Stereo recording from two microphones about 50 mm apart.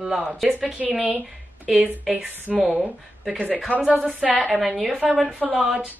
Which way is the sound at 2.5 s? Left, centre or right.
Centre.